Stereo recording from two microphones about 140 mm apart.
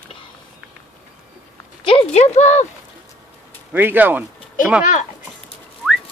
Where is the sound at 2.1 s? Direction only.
55° left (ahead or behind).